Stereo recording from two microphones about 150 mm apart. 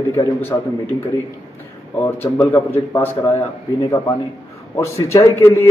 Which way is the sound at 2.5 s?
15° left (ahead or behind).